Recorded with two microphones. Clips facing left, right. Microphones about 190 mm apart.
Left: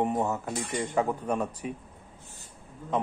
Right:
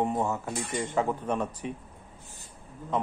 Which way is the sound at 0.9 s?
35° left (ahead or behind).